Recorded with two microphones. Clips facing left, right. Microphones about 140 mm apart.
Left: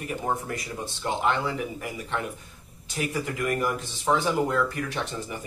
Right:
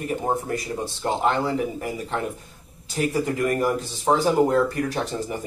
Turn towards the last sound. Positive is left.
turn(degrees=-35)  # may be behind; listen again after turning